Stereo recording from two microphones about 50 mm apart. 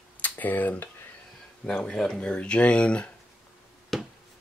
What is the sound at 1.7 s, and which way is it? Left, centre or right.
Speech, centre.